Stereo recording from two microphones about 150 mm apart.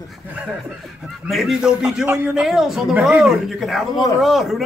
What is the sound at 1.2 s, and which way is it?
Speech, centre (ahead or behind).